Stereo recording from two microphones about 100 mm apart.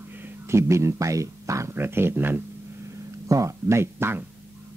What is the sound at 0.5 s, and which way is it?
Speech, 30° right (ahead or behind).